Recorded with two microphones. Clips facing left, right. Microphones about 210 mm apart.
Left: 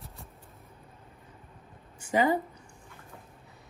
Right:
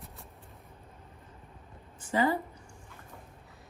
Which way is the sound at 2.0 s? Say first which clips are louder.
Left 2 dB; 15° left (ahead or behind).